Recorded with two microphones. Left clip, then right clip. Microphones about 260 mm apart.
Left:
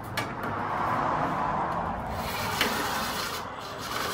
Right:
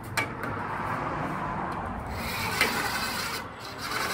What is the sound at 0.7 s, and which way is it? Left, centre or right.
Vehicle, left.